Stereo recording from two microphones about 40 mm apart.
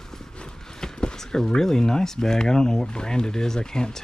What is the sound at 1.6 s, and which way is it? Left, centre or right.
Speech, centre.